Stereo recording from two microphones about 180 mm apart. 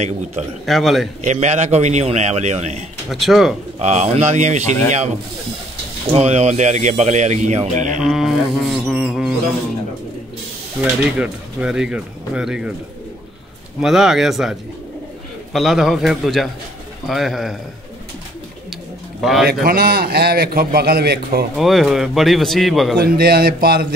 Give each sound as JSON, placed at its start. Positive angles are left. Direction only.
{"t": 0.7, "sound": "speech", "side_deg": 0}
{"t": 1.2, "sound": "speech", "side_deg": -40}
{"t": 3.1, "sound": "speech", "side_deg": 0}
{"t": 3.8, "sound": "speech", "side_deg": -40}
{"t": 6.1, "sound": "speech", "side_deg": -40}
{"t": 8.0, "sound": "bird", "side_deg": 0}
{"t": 10.8, "sound": "speech", "side_deg": -5}
{"t": 13.7, "sound": "speech", "side_deg": 0}
{"t": 19.4, "sound": "a man's voice", "side_deg": -60}
{"t": 21.5, "sound": "speech", "side_deg": 0}
{"t": 22.9, "sound": "a man's voice", "side_deg": -60}